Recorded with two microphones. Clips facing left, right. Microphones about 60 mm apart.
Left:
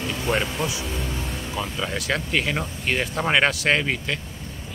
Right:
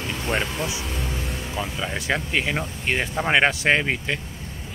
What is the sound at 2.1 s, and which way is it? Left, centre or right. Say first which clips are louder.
Speech: left 1 dB; centre.